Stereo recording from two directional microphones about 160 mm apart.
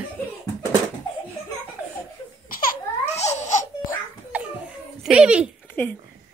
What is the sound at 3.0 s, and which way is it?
Babbling, 45° left (ahead or behind).